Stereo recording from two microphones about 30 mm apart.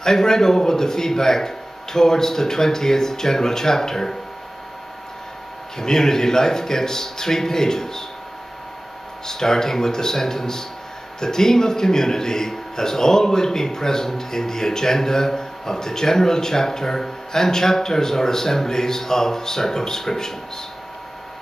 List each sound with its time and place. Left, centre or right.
0.0 s a man's voice: centre
5.8 s a man's voice: centre
9.2 s a man's voice: centre